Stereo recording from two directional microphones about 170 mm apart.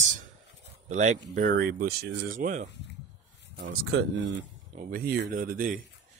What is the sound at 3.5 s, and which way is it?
Speech, 90° right.